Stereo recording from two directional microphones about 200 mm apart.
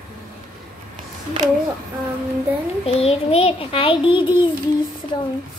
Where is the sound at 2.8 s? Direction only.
30° left (ahead or behind).